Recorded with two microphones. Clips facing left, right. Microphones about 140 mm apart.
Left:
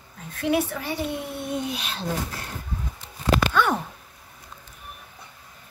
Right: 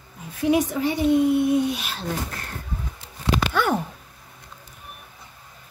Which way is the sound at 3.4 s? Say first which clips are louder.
Right 2 dB; 5° right (ahead or behind).